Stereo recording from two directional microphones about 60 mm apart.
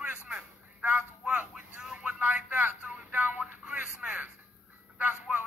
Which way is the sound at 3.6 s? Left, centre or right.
Right.